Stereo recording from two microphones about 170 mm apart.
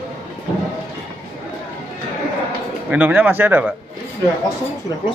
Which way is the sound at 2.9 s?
10° right (ahead or behind).